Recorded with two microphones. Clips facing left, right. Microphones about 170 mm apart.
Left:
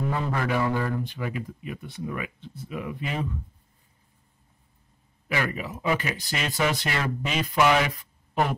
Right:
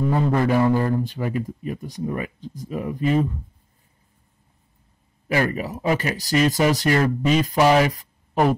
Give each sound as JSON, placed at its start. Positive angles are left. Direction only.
{"t": 0.1, "sound": "speech", "side_deg": -35}
{"t": 5.3, "sound": "speech", "side_deg": -40}
{"t": 8.0, "sound": "a sound", "side_deg": -40}